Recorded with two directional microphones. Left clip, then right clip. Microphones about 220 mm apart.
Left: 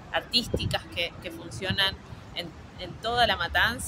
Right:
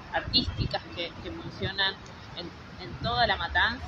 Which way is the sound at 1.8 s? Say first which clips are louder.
Left 1 dB; 35° left (ahead or behind).